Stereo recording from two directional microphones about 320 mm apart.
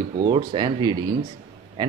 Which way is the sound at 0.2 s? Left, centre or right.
Centre.